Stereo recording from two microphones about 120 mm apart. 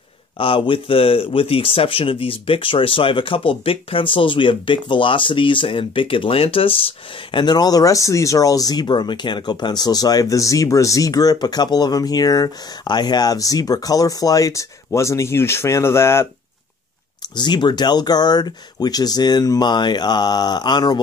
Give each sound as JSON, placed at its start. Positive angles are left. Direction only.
{"t": 0.4, "sound": "speech", "side_deg": 50}
{"t": 17.4, "sound": "speech", "side_deg": 40}